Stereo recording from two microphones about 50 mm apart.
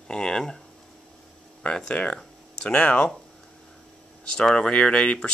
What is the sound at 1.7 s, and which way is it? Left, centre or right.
Speech, centre.